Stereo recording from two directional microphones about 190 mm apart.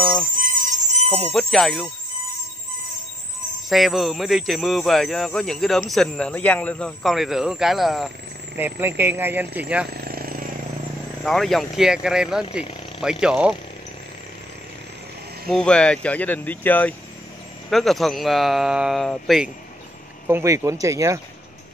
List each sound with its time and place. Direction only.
0.4 s music: 45° right (ahead or behind)
1.3 s speech: centre (ahead or behind)
3.6 s speech: centre (ahead or behind)
9.9 s vehicle: 55° right (ahead or behind)
11.2 s speech: centre (ahead or behind)
15.5 s speech: 5° left (ahead or behind)
20.2 s speech: 15° right (ahead or behind)